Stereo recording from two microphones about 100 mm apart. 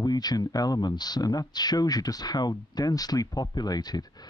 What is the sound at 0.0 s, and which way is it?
Speech, 40° left (ahead or behind).